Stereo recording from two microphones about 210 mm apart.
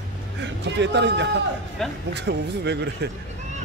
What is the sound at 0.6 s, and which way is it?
Speech, 55° right (ahead or behind).